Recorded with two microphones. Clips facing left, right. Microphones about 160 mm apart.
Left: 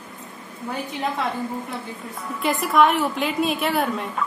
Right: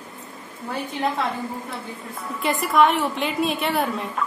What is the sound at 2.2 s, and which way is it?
A woman's voice, centre (ahead or behind).